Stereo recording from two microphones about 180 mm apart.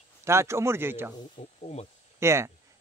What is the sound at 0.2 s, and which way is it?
Speech, 15° right (ahead or behind).